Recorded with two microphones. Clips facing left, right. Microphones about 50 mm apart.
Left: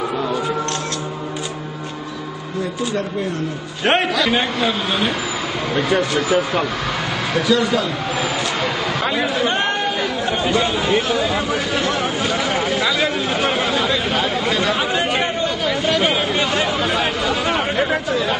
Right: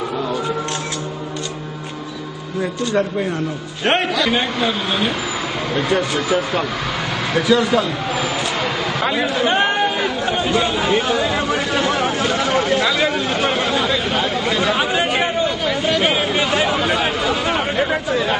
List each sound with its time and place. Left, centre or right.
3.8 s a man's voice: centre
7.3 s a man's voice: centre
9.5 s chatter: centre